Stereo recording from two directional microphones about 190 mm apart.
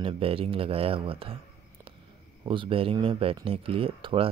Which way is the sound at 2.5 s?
25° right (ahead or behind).